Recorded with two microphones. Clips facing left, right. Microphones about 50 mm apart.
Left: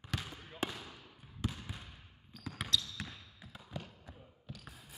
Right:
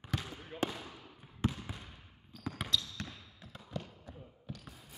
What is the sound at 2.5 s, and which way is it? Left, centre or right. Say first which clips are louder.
Basketball bounce: left 1 dB; centre.